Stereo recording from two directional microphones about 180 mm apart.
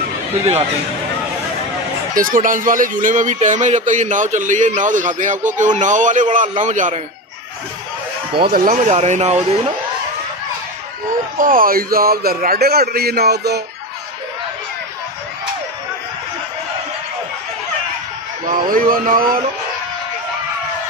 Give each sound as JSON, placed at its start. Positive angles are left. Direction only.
{"t": 2.1, "sound": "speech", "side_deg": -50}
{"t": 8.5, "sound": "speech", "side_deg": -50}
{"t": 11.3, "sound": "a man's voice", "side_deg": -50}
{"t": 18.7, "sound": "speech", "side_deg": -50}